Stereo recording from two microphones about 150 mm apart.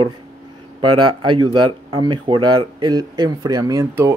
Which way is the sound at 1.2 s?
30° right (ahead or behind).